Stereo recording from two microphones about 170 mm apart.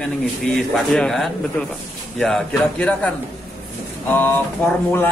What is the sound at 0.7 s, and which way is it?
A man's voice, 5° left (ahead or behind).